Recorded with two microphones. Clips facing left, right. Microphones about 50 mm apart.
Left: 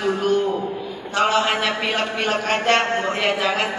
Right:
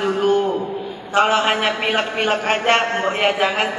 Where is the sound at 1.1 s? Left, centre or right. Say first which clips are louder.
Right 3 dB; right.